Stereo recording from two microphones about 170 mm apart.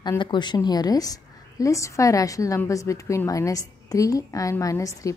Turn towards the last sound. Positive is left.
turn(degrees=20)  # may be behind; listen again after turning